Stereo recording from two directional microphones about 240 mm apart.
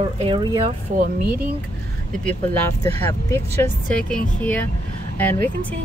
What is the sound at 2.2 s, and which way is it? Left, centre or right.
Speech, centre.